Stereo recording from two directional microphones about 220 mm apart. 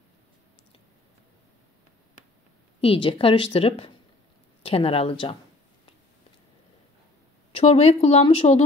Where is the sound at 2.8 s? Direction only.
25° left (ahead or behind).